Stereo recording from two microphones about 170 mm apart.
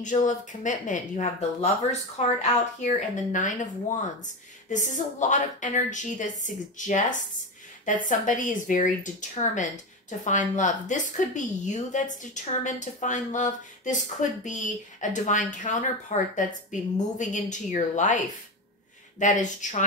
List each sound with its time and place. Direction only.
0.0 s speech: 45° left (ahead or behind)
4.6 s speech: 45° left (ahead or behind)